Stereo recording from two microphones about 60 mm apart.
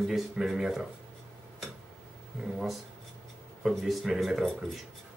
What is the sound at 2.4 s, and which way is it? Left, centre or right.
Speech, centre.